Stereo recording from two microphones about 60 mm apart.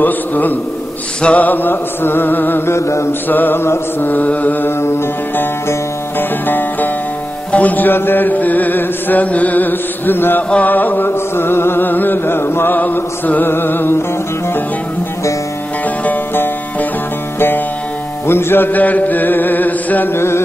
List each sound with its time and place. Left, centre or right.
0.0 s music: left
2.7 s mantra: left
3.3 s music: left
4.1 s music: left
4.8 s music: left
18.2 s music: left
20.2 s music: left